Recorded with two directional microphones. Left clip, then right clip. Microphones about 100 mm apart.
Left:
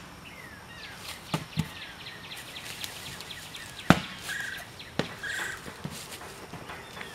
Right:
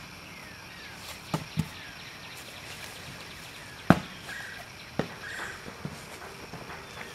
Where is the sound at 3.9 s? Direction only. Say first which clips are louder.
Left 1 dB; 25° left (ahead or behind).